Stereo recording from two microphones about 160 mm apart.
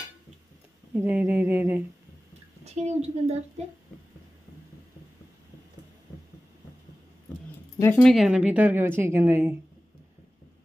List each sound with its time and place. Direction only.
0.9 s a woman's voice: 10° right (ahead or behind)
2.6 s a woman's voice: 45° right (ahead or behind)
7.8 s speech: 10° left (ahead or behind)
8.1 s a woman's voice: 5° right (ahead or behind)